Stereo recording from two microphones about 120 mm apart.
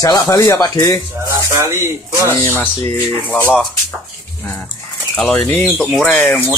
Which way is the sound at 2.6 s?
15° left (ahead or behind).